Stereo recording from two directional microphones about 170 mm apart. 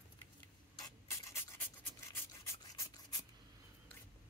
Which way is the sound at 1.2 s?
15° left (ahead or behind).